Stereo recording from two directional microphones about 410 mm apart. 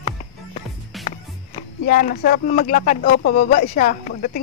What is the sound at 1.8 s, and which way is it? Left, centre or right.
Speech, left.